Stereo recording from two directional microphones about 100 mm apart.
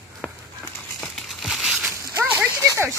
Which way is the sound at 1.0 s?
Centre (ahead or behind).